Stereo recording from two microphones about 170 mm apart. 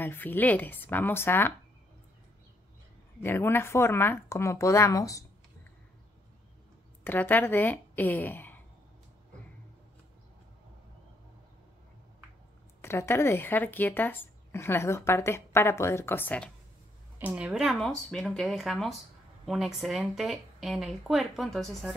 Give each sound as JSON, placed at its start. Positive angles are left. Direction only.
{"t": 0.0, "sound": "speech", "side_deg": 10}
{"t": 3.2, "sound": "speech", "side_deg": 15}
{"t": 7.1, "sound": "speech", "side_deg": 10}
{"t": 12.8, "sound": "speech", "side_deg": 15}
{"t": 17.2, "sound": "speech", "side_deg": -10}